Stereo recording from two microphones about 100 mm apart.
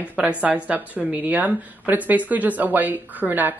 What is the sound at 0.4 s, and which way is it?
Speech, 15° right (ahead or behind).